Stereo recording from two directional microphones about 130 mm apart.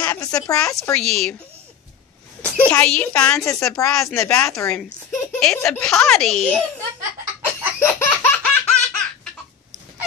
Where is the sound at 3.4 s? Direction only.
25° left (ahead or behind).